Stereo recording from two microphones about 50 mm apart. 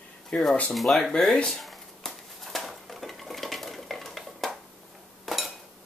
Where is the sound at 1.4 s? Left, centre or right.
Centre.